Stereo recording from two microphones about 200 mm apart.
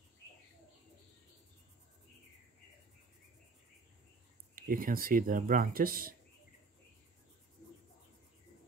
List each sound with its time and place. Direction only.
4.6 s speech: 45° right (ahead or behind)